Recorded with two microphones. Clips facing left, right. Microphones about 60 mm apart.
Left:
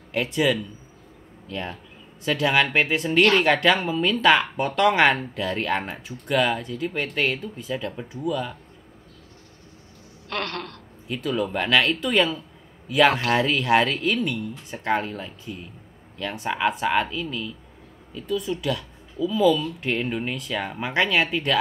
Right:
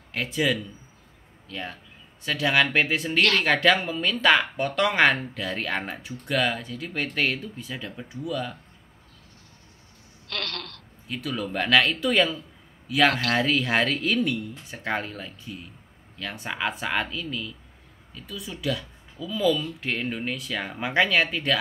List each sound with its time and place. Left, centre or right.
0.1 s speech: centre
3.2 s speech: centre
3.4 s speech: centre
10.2 s a sound: left
11.1 s speech: centre
13.1 s speech: centre
13.4 s speech: centre